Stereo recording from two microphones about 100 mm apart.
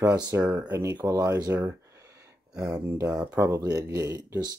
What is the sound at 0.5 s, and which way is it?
Speech, 20° right (ahead or behind).